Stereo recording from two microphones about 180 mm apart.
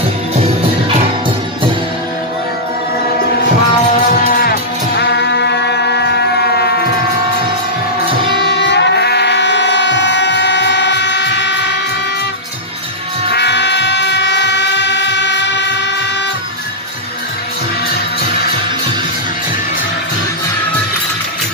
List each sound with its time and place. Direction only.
4.3 s music: 55° left (ahead or behind)
8.4 s music: 70° left (ahead or behind)
13.3 s train: 70° left (ahead or behind)